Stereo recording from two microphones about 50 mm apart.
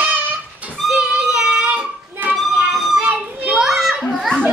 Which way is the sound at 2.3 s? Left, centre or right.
Right.